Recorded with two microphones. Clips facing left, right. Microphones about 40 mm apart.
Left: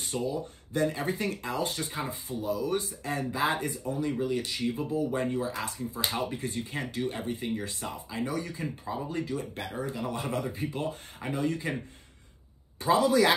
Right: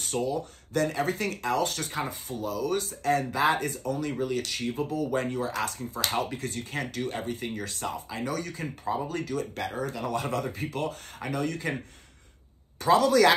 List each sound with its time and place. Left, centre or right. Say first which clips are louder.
0.1 s speech: right 3 dB; right
5.1 s speech: right 1 dB; right
12.8 s speech: right 3 dB; right